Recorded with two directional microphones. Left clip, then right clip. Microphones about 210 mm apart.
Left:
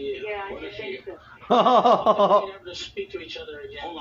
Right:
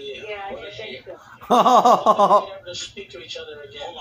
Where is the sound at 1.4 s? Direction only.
10° right (ahead or behind).